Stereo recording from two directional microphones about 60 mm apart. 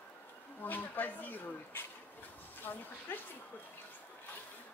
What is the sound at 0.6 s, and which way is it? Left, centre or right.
Speech, left.